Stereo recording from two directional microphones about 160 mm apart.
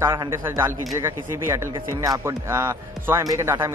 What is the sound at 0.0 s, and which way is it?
A man's voice, 15° right (ahead or behind).